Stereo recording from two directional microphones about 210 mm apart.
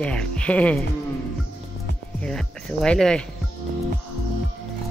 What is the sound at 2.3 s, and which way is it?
Speech, 5° left (ahead or behind).